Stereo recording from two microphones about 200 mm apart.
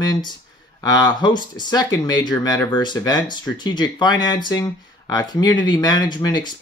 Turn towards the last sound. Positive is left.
turn(degrees=20)  # may be behind; listen again after turning